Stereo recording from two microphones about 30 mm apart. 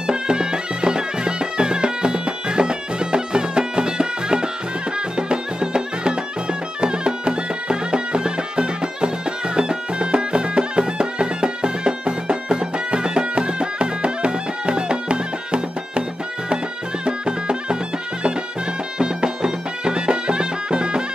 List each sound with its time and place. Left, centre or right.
0.0 s music: right
17.0 s music: right
18.9 s music: right